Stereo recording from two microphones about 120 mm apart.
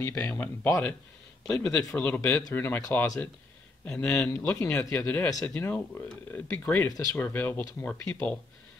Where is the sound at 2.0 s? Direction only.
15° left (ahead or behind).